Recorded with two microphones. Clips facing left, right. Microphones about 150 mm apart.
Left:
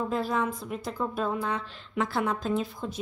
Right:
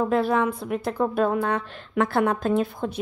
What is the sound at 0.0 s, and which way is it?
A woman's voice, 65° right (ahead or behind).